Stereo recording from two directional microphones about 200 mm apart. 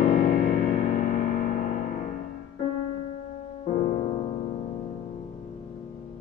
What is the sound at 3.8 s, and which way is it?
Music, 30° left (ahead or behind).